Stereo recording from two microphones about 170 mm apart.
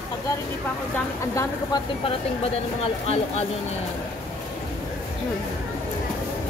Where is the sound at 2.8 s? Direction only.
40° left (ahead or behind).